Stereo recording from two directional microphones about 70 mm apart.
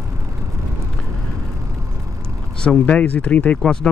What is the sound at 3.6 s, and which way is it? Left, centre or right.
Speech, centre.